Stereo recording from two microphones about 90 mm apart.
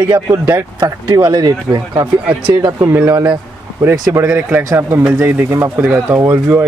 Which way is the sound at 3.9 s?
40° right (ahead or behind).